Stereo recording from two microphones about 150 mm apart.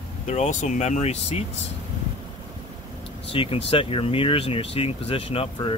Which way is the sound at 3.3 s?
40° left (ahead or behind).